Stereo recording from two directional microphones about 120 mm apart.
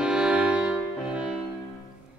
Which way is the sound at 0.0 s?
10° right (ahead or behind).